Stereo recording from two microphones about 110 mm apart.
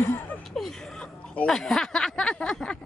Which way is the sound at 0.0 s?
20° left (ahead or behind).